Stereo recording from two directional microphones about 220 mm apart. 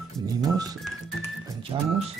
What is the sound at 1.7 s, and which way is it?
Speech, 20° right (ahead or behind).